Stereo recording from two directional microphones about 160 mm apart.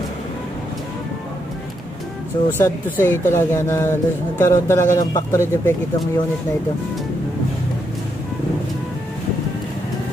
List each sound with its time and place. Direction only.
2.5 s speech: 15° left (ahead or behind)